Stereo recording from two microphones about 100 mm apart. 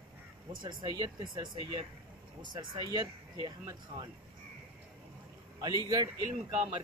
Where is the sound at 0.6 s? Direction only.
45° right (ahead or behind).